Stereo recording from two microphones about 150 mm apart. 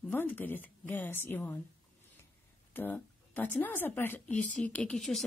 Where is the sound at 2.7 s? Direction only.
15° left (ahead or behind).